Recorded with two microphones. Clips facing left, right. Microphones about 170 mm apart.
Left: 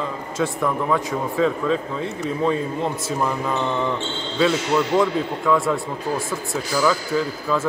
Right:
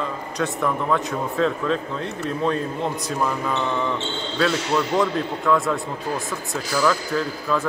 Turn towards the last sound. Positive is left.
turn(degrees=5)  # may be behind; listen again after turning